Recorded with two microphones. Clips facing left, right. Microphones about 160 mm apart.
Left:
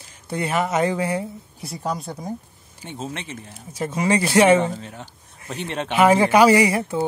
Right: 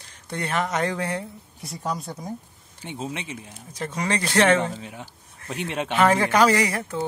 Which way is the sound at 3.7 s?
10° left (ahead or behind).